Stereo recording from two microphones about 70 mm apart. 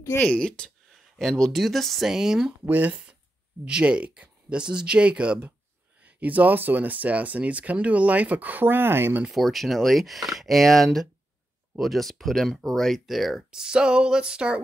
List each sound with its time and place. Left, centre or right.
0.2 s speech: centre
1.1 s speech: centre
2.6 s speech: right
9.3 s speech: centre